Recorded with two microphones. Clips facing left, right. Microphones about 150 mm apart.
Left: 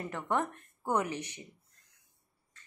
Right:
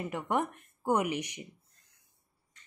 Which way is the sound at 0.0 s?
15° right (ahead or behind).